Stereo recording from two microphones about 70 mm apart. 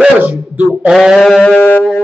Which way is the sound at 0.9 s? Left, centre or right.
Centre.